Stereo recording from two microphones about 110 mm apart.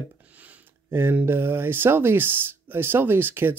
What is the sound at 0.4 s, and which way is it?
Speech, 15° right (ahead or behind).